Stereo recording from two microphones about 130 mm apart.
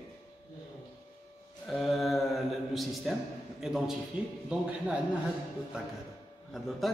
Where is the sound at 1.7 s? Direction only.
Centre (ahead or behind).